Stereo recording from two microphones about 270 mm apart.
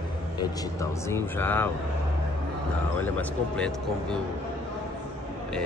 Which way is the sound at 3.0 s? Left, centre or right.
Centre.